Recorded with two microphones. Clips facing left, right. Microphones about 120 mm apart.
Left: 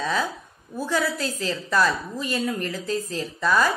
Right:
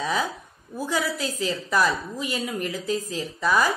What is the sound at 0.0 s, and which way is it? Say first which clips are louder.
A woman's voice: even; 15° right (ahead or behind).